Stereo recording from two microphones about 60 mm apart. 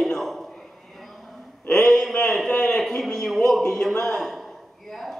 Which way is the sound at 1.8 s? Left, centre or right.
Centre.